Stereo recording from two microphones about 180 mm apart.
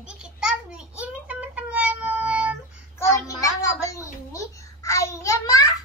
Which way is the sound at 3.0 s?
15° left (ahead or behind).